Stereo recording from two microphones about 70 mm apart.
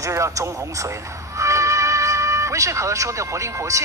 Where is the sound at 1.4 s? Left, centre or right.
Right.